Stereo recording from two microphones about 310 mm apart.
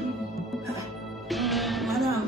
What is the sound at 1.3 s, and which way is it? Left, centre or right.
Music, centre.